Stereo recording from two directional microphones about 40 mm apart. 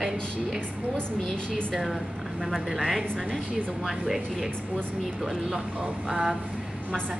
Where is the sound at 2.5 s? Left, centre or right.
Centre.